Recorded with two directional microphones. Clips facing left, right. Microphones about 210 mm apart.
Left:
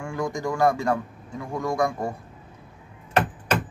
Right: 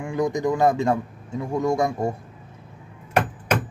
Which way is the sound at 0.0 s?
20° right (ahead or behind).